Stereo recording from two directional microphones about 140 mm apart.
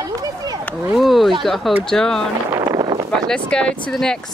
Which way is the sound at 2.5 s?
30° right (ahead or behind).